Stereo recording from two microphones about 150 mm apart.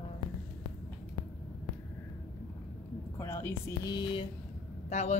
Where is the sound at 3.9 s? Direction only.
35° left (ahead or behind).